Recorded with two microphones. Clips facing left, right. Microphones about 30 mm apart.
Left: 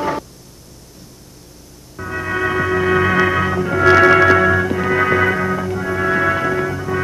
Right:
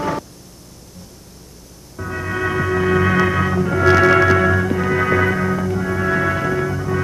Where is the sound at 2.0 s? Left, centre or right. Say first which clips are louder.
Left 2 dB; centre.